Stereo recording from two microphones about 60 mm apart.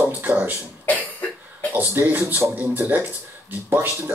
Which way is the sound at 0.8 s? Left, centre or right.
Left.